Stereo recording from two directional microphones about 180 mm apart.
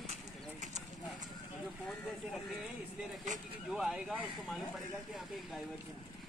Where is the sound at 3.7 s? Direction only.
Centre (ahead or behind).